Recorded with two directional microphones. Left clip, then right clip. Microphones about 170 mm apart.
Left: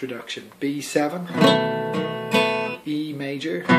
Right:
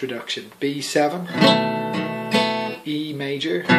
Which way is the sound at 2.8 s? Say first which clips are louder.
Right 2 dB; 20° left (ahead or behind).